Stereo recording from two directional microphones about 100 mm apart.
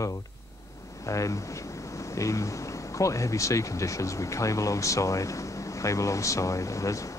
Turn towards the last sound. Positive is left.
turn(degrees=30)  # may be behind; listen again after turning